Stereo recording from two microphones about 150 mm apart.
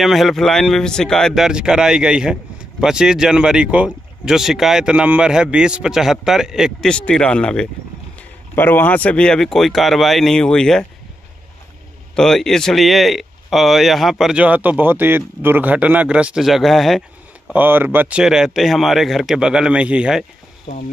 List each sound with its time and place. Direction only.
0.0 s speech: centre (ahead or behind)
12.2 s speech: 5° left (ahead or behind)
17.5 s speech: 15° right (ahead or behind)
20.7 s speech: 50° left (ahead or behind)